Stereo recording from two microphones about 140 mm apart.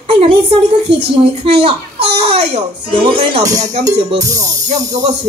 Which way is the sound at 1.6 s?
40° right (ahead or behind).